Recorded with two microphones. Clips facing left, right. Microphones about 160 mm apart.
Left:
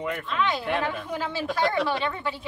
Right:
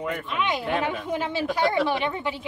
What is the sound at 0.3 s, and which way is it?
A woman's voice, 15° right (ahead or behind).